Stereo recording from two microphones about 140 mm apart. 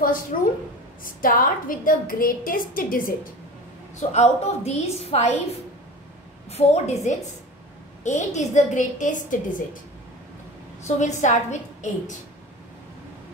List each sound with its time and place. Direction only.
0.0 s a woman's voice: 80° left
1.0 s a woman's voice: 90° left
4.1 s a woman's voice: 50° left (ahead or behind)
11.0 s a woman's voice: 60° left (ahead or behind)